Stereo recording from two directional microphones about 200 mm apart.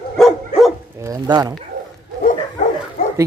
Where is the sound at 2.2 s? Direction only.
40° left (ahead or behind).